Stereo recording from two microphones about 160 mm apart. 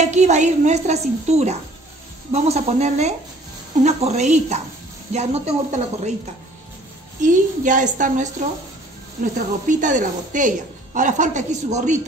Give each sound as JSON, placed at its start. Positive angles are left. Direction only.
{"t": 0.0, "sound": "a woman's voice", "side_deg": -45}
{"t": 7.2, "sound": "a woman's voice", "side_deg": -55}